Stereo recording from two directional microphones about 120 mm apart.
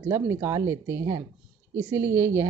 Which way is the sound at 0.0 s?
20° right (ahead or behind).